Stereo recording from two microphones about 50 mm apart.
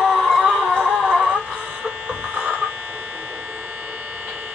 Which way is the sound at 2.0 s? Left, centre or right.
Right.